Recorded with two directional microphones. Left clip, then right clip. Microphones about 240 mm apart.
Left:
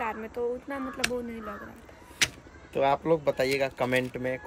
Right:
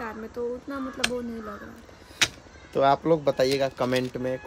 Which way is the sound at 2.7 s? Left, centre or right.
Centre.